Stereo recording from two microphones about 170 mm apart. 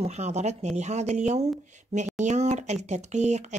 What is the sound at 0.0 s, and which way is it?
A woman's voice, 40° right (ahead or behind).